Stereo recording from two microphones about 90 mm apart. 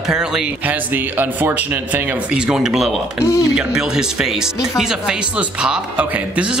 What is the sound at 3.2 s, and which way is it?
Speech, 35° left (ahead or behind).